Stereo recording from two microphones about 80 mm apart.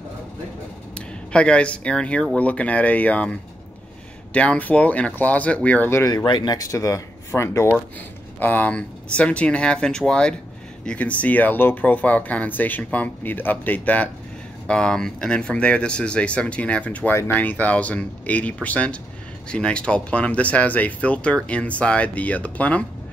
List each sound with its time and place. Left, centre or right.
1.3 s speech: centre
6.2 s speech: left
6.6 s speech: left
8.4 s speech: left